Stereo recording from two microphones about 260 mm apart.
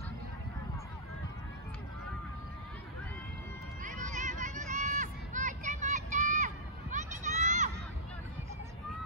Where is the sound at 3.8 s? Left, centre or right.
Right.